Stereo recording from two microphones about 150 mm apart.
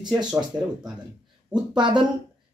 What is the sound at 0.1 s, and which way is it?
Speech, 5° right (ahead or behind).